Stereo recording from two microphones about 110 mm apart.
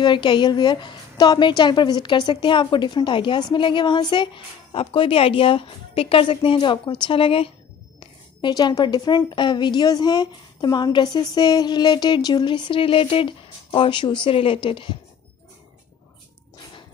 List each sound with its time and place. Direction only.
0.0 s a woman's voice: 45° left (ahead or behind)
8.0 s a woman's voice: 45° left (ahead or behind)